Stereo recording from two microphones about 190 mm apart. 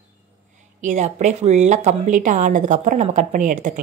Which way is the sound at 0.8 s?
40° right (ahead or behind).